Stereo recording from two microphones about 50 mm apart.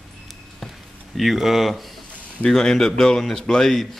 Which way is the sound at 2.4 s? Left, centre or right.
Centre.